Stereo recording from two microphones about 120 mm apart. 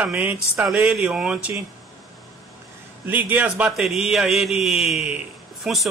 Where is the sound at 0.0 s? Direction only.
10° right (ahead or behind).